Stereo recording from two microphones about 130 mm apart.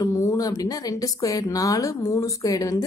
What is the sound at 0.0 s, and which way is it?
Speech, 30° left (ahead or behind).